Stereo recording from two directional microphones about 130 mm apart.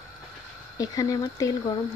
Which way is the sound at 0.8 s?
30° left (ahead or behind).